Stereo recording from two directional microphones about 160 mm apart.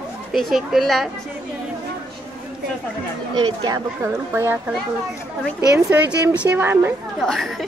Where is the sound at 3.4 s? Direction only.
30° right (ahead or behind).